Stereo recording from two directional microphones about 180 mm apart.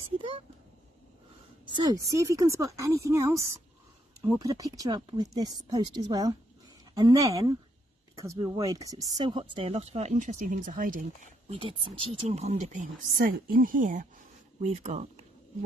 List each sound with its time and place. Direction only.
1.8 s speech: 20° right (ahead or behind); by 11.1 s 50° right (ahead or behind)
11.5 s speech: 30° right (ahead or behind); by 14.0 s 50° right (ahead or behind)
14.6 s speech: 40° right (ahead or behind)